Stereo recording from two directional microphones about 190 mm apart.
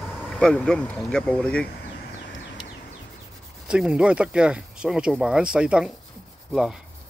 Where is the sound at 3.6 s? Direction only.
5° right (ahead or behind).